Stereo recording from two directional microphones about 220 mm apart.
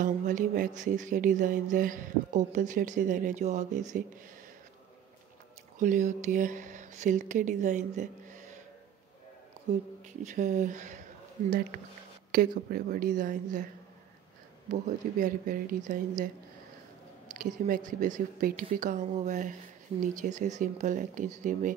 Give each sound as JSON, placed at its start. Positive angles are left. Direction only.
{"t": 0.0, "sound": "music", "side_deg": -35}
{"t": 5.8, "sound": "speech", "side_deg": -35}
{"t": 10.0, "sound": "music", "side_deg": -35}
{"t": 12.3, "sound": "music", "side_deg": -40}
{"t": 14.7, "sound": "music", "side_deg": -35}
{"t": 17.4, "sound": "music", "side_deg": -35}